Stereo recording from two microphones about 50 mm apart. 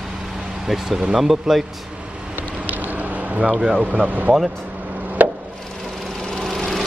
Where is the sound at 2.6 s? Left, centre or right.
Right.